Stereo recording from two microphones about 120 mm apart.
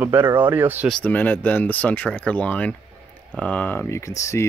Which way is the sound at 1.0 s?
15° left (ahead or behind).